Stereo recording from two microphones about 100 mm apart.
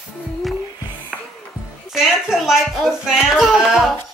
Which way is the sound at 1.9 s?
5° right (ahead or behind).